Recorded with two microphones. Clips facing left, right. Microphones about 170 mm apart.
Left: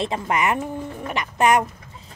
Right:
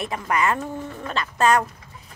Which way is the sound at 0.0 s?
25° left (ahead or behind).